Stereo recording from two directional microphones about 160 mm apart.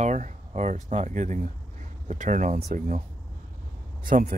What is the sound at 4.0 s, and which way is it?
Speech, 55° right (ahead or behind).